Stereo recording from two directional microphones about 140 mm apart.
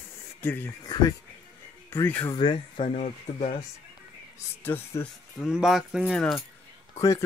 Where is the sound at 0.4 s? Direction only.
15° left (ahead or behind).